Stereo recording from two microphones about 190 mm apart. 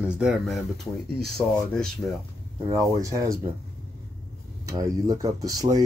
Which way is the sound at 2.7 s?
15° right (ahead or behind).